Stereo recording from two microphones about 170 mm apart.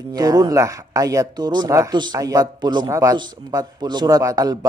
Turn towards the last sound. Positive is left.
turn(degrees=-20)  # may be behind; listen again after turning